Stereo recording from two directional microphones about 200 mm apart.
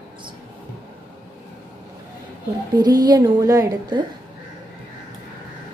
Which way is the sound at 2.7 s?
20° right (ahead or behind).